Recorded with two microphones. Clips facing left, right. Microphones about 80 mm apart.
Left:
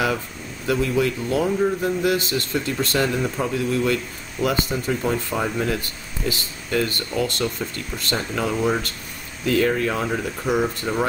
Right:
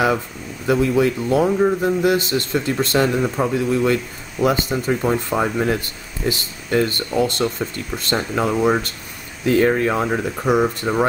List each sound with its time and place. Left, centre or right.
0.7 s speech: right